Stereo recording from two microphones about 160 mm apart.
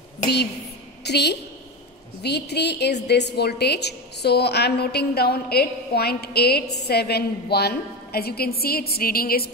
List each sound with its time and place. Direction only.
1.0 s a woman's voice: 90° left; by 9.5 s 70° left (ahead or behind)